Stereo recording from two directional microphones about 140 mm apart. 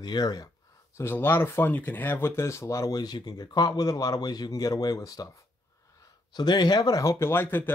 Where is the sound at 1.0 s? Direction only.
15° left (ahead or behind).